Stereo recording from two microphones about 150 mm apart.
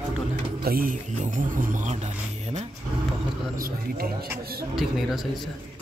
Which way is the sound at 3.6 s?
85° right.